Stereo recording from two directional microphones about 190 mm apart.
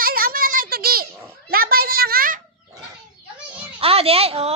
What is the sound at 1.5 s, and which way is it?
Speech, 50° right (ahead or behind).